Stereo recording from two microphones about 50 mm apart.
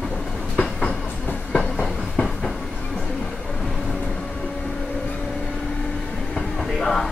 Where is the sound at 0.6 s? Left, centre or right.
Left.